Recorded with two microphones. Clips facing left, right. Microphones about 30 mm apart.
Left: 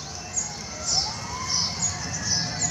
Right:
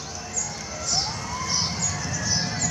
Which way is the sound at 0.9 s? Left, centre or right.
Centre.